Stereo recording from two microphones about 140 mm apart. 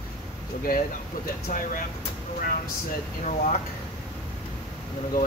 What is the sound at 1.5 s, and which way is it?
Speech, 85° left.